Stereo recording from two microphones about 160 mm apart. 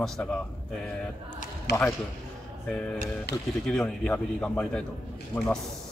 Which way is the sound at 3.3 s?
90° left.